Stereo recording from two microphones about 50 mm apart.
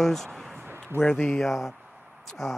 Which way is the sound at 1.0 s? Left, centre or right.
Left.